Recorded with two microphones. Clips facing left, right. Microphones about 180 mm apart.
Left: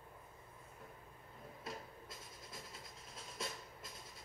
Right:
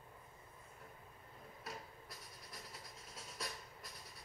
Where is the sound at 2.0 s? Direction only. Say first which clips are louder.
Left 2 dB; 25° left (ahead or behind).